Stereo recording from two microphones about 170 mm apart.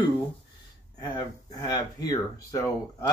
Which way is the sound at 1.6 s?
20° left (ahead or behind).